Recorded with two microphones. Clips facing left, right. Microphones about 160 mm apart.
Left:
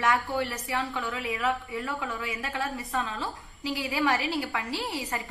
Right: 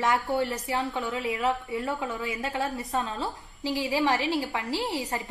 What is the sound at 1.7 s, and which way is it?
Speech, 20° right (ahead or behind).